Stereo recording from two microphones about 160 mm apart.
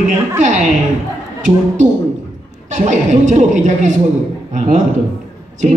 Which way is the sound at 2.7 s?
50° right (ahead or behind).